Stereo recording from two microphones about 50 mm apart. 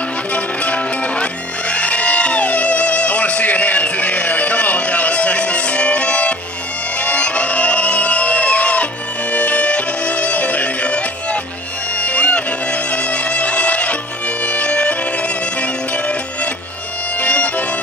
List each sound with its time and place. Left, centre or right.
0.3 s music: left
17.2 s music: left